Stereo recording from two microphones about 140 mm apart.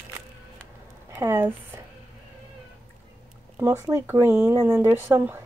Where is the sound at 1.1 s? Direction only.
15° right (ahead or behind).